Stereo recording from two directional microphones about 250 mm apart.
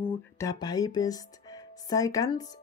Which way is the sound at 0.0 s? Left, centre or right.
Centre.